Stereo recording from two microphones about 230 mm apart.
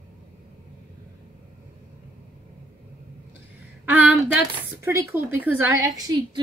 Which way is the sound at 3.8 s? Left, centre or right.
Centre.